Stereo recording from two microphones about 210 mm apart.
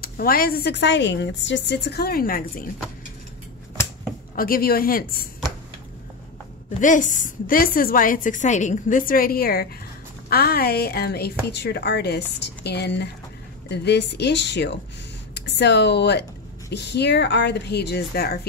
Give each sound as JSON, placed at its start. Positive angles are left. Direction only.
{"t": 0.0, "sound": "speech", "side_deg": 45}
{"t": 4.4, "sound": "speech", "side_deg": 45}
{"t": 6.8, "sound": "a woman's voice", "side_deg": 35}